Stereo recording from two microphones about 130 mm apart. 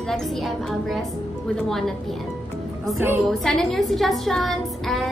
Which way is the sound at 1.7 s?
5° left (ahead or behind).